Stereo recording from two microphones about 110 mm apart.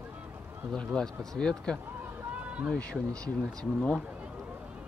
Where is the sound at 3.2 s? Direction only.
5° left (ahead or behind).